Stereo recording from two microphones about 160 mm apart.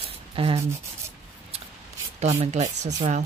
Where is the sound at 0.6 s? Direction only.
15° right (ahead or behind).